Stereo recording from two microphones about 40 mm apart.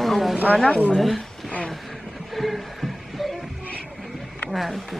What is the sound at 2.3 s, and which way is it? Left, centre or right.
Music, centre.